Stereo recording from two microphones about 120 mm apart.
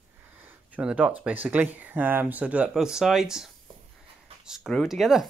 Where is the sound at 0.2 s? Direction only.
15° right (ahead or behind).